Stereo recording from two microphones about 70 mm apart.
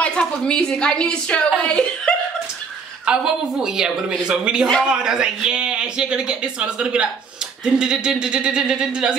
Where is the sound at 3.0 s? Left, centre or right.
Centre.